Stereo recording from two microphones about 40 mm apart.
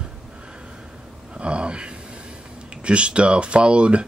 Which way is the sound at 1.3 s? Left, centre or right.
Right.